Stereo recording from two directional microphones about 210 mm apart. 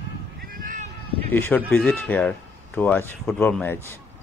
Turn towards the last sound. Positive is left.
turn(degrees=10)  # may be behind; listen again after turning